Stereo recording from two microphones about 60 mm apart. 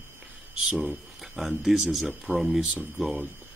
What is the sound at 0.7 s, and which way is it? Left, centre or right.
Speech, centre.